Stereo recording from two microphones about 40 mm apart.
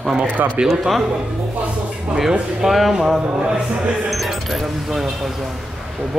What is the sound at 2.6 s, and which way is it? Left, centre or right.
Speech, centre.